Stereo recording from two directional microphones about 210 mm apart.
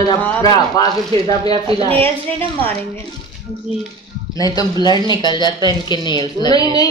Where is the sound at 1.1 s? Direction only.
25° right (ahead or behind).